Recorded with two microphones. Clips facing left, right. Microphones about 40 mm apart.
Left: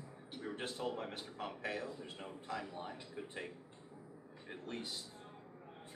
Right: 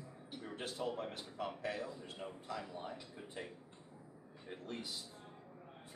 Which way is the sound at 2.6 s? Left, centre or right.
Centre.